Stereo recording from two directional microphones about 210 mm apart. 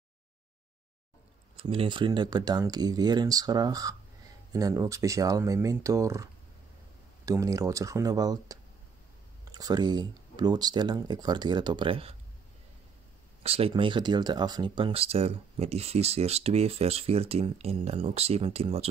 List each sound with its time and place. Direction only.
1.6 s speech: 25° right (ahead or behind)
7.2 s speech: 15° right (ahead or behind)
13.4 s speech: 30° right (ahead or behind)